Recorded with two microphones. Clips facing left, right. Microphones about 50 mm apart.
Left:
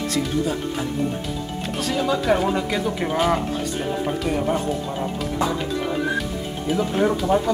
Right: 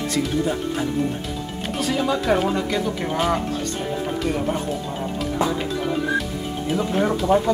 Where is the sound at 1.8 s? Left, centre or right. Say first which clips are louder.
Even; centre.